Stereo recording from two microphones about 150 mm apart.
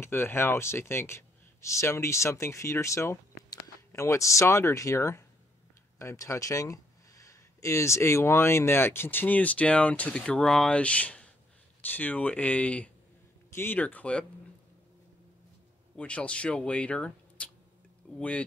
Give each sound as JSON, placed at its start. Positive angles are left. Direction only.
{"t": 0.0, "sound": "speech", "side_deg": 15}
{"t": 16.0, "sound": "speech", "side_deg": 10}